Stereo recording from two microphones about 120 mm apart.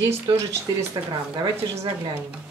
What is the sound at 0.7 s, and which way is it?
Speech, 35° right (ahead or behind).